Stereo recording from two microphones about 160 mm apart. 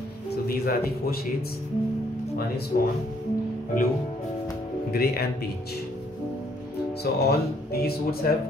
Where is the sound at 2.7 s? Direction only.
60° left (ahead or behind).